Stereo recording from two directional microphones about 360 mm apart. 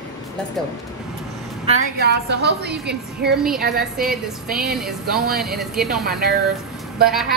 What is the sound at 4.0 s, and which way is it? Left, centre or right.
Speech, centre.